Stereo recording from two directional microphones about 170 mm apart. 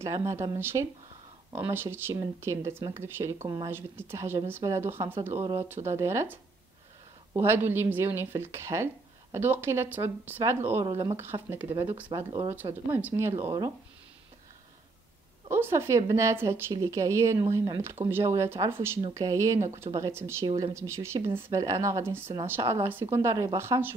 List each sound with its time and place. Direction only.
0.0 s speech: 20° right (ahead or behind)
11.3 s speech: 25° right (ahead or behind)
12.6 s speech: 15° right (ahead or behind)
15.4 s a woman's voice: 15° right (ahead or behind)
20.4 s speech: 25° right (ahead or behind)
20.7 s speech: 15° right (ahead or behind)